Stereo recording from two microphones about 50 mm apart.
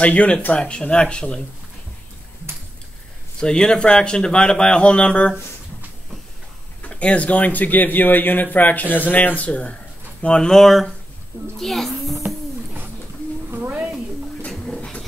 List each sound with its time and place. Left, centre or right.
0.0 s speech: left
3.3 s speech: centre
6.9 s speech: left
10.2 s speech: centre
13.5 s a sound: right
14.5 s a sound: centre